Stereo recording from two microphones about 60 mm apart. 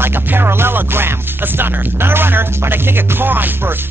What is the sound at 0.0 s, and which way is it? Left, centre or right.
Music, right.